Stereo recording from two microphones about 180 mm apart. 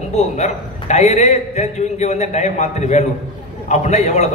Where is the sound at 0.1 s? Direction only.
40° left (ahead or behind).